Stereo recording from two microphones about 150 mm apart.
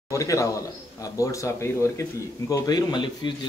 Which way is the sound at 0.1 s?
20° left (ahead or behind).